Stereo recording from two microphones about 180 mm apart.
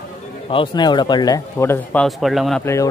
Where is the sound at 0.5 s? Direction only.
25° left (ahead or behind); by 2.6 s centre (ahead or behind).